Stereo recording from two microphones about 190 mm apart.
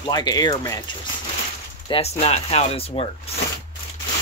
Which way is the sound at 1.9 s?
30° left (ahead or behind).